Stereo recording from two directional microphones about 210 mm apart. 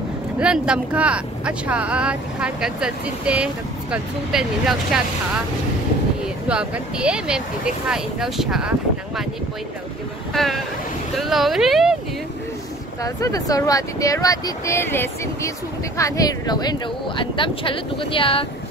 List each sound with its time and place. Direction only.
0.4 s speech: 5° right (ahead or behind)
6.2 s speech: 5° right (ahead or behind)
10.3 s speech: centre (ahead or behind)
13.0 s speech: 15° left (ahead or behind)